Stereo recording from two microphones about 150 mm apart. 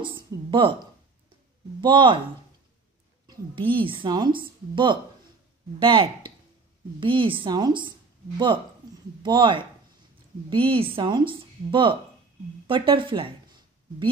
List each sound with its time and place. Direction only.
0.0 s speech: 35° right (ahead or behind)
1.8 s a woman's voice: 30° right (ahead or behind)
3.3 s a woman's voice: 35° right (ahead or behind)
9.2 s a woman's voice: 30° right (ahead or behind)